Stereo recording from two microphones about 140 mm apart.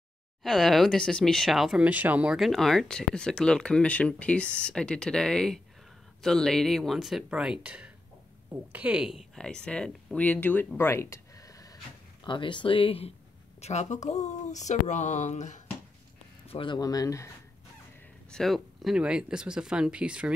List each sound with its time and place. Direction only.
0.4 s speech: centre (ahead or behind); by 11.8 s 25° left (ahead or behind)
12.3 s speech: 35° left (ahead or behind)
13.6 s speech: 55° left (ahead or behind)
16.4 s speech: 35° left (ahead or behind)
18.3 s speech: centre (ahead or behind)